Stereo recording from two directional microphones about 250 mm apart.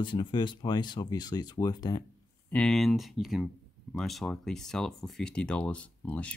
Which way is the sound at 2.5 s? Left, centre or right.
Centre.